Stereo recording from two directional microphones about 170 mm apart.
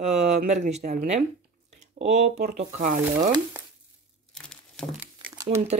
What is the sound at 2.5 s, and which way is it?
Speech, 45° right (ahead or behind).